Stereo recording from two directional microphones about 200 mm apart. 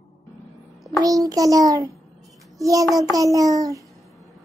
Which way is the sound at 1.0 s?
15° right (ahead or behind).